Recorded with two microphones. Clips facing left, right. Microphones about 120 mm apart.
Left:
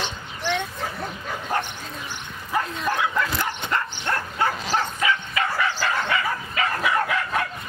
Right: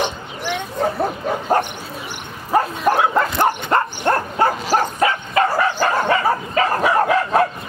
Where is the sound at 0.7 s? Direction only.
50° right (ahead or behind).